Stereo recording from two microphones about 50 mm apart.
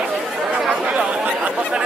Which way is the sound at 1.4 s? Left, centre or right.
Centre.